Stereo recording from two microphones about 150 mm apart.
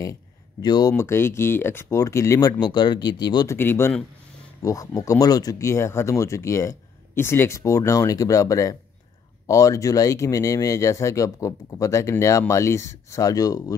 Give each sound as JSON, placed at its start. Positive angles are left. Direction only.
{"t": 0.6, "sound": "speech", "side_deg": 25}
{"t": 3.5, "sound": "speech", "side_deg": 15}